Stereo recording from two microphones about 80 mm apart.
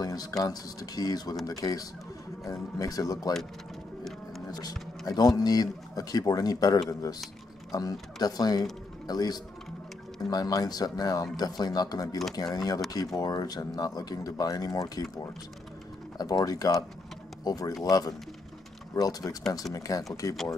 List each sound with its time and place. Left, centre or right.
0.0 s a sound: left
0.4 s speech: left
4.5 s speech: left
8.2 s a man's voice: left